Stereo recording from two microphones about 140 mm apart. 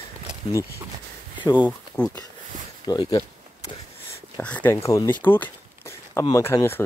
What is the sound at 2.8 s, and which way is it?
Speech, 30° left (ahead or behind).